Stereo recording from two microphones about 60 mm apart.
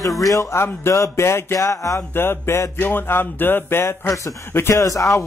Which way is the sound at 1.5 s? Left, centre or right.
Left.